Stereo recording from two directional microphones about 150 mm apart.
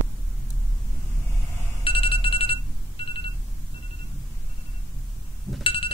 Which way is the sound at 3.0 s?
35° left (ahead or behind).